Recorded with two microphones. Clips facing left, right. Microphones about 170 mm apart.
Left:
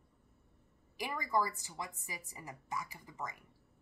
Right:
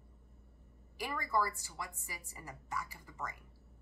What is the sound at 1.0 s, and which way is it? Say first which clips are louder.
A woman's voice: left 1 dB; 15° left (ahead or behind).